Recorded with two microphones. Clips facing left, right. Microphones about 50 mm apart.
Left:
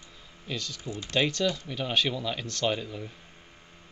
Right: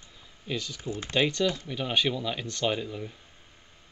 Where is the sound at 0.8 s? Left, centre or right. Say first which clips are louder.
Right 2 dB; right.